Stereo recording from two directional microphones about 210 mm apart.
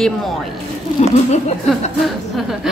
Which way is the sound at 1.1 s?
35° left (ahead or behind).